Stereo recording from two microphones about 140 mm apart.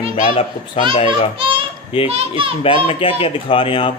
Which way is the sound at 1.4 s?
35° right (ahead or behind).